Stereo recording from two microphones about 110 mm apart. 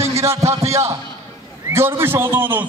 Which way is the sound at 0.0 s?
25° right (ahead or behind).